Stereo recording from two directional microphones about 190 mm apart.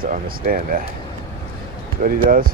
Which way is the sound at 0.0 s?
45° right (ahead or behind).